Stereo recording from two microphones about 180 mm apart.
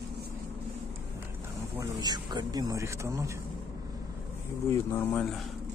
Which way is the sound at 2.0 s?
20° right (ahead or behind).